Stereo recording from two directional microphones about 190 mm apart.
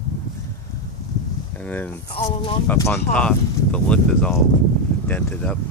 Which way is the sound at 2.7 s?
15° left (ahead or behind).